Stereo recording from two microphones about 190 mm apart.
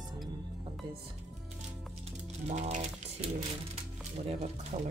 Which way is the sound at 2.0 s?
35° right (ahead or behind).